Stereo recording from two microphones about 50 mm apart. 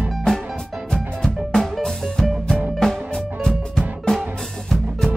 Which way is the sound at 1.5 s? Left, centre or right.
Centre.